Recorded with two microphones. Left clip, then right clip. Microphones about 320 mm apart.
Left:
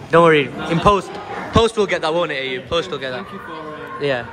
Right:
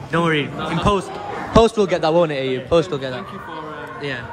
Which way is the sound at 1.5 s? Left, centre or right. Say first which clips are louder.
Right 1 dB; centre.